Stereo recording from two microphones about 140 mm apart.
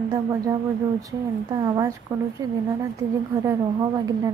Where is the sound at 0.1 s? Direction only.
25° right (ahead or behind).